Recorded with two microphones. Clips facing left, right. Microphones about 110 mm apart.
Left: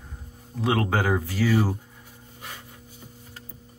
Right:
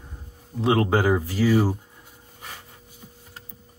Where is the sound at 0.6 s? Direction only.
25° right (ahead or behind).